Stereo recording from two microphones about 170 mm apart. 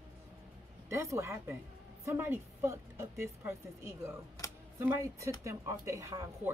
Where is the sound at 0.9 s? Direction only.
15° right (ahead or behind).